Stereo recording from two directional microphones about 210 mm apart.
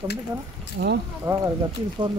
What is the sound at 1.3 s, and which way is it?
Speech, 15° right (ahead or behind).